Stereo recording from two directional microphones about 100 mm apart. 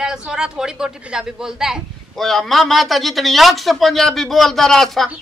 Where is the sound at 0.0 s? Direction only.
5° right (ahead or behind).